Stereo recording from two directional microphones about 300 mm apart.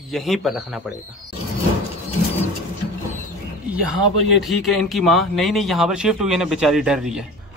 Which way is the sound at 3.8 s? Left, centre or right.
Right.